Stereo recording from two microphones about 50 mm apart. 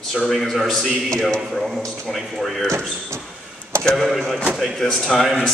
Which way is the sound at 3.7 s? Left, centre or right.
Right.